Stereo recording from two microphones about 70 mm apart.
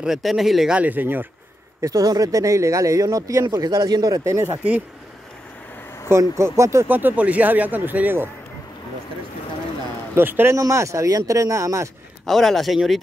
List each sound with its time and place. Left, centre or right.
0.0 s speech: centre
0.7 s speech: right
1.8 s speech: right
3.5 s speech: right
6.0 s speech: right
6.9 s speech: right
10.1 s a man's voice: right
10.5 s speech: right
12.3 s speech: centre